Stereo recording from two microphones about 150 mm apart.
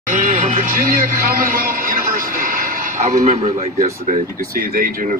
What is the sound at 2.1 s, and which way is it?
Music, 75° right (ahead or behind).